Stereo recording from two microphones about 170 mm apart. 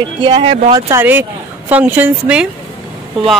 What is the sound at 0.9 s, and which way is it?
A woman's voice, 15° right (ahead or behind).